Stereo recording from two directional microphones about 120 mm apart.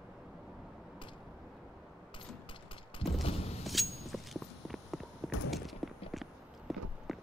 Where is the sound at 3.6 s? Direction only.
Centre (ahead or behind).